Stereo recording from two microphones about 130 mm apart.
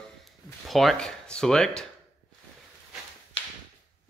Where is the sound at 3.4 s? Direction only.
45° left (ahead or behind).